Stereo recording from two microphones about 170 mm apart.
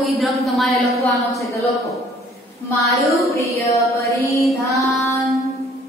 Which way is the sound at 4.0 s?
20° left (ahead or behind).